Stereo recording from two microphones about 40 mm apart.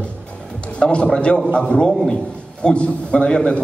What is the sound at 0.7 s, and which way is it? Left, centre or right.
Speech, left.